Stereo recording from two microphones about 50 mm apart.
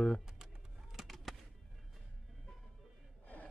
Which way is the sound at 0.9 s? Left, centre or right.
Centre.